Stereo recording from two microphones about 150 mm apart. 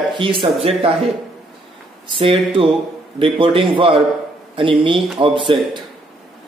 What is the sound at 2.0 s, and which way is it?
A man's voice, 35° right (ahead or behind).